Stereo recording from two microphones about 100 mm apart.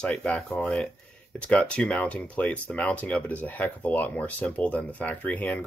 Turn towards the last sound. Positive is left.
turn(degrees=15)  # may be behind; listen again after turning